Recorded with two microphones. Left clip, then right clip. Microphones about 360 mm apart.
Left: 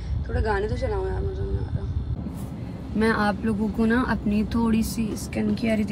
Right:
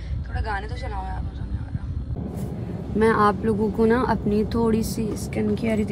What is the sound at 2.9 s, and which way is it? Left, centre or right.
Speech, centre.